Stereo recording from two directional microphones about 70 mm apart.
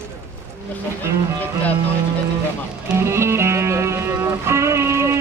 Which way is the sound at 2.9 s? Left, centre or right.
Right.